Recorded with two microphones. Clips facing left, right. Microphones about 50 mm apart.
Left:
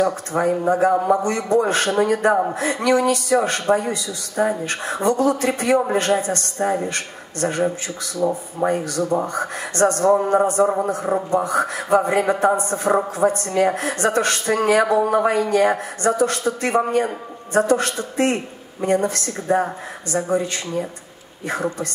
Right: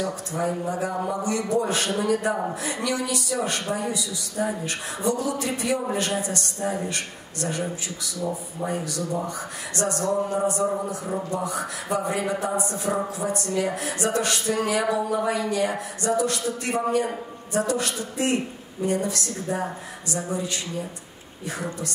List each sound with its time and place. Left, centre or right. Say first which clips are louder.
0.0 s a man's voice: left 7 dB; left